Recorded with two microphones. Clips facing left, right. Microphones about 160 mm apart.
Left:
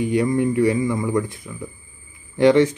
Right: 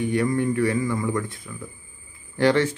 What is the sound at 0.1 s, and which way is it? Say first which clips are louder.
A man's voice: left 4 dB; 20° left (ahead or behind).